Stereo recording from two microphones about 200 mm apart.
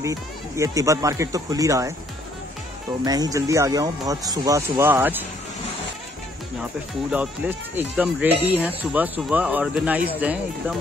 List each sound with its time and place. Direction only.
0.0 s speech: 15° right (ahead or behind)
3.1 s speech: 20° right (ahead or behind)
7.1 s speech: 10° right (ahead or behind)